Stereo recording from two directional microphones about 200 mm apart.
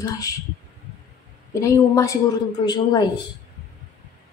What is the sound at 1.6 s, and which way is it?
Speech, 15° left (ahead or behind).